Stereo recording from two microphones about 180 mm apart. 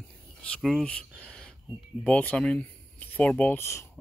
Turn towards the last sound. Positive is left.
turn(degrees=15)  # may be behind; listen again after turning